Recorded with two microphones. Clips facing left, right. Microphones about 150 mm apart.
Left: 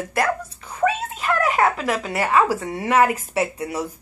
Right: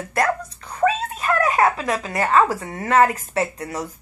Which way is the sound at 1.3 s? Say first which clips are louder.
Right 1 dB; 25° right (ahead or behind).